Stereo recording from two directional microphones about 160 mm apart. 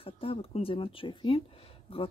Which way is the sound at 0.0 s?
35° left (ahead or behind).